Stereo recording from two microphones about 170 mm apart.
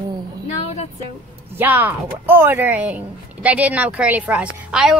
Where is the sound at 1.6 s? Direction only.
10° right (ahead or behind).